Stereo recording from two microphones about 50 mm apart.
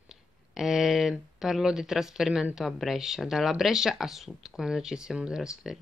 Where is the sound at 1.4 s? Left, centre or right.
Centre.